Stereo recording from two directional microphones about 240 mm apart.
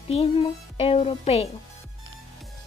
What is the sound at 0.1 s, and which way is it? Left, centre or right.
Speech, left.